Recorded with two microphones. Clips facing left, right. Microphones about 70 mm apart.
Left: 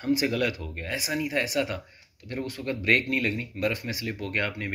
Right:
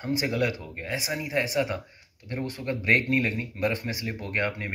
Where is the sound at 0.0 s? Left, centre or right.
Right.